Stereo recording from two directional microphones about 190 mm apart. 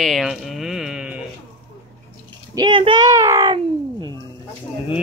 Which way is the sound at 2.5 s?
25° right (ahead or behind).